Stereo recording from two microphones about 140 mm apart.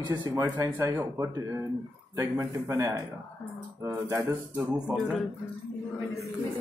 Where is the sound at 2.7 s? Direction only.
20° right (ahead or behind).